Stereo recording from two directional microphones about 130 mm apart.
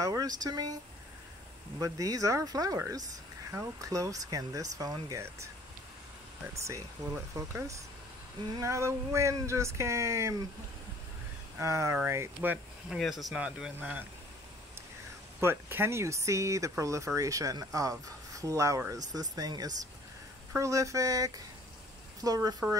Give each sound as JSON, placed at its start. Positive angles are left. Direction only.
{"t": 0.0, "sound": "speech", "side_deg": -30}
{"t": 1.8, "sound": "speech", "side_deg": -25}
{"t": 11.5, "sound": "speech", "side_deg": -25}
{"t": 12.9, "sound": "speech", "side_deg": 0}
{"t": 15.4, "sound": "speech", "side_deg": -15}